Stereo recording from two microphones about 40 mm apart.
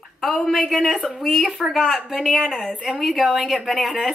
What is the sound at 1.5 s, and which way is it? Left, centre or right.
Speech, centre.